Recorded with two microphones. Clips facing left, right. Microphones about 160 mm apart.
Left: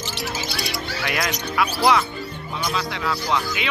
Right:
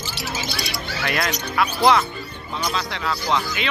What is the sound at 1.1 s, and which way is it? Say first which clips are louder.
Speech: right 2 dB; 10° left (ahead or behind).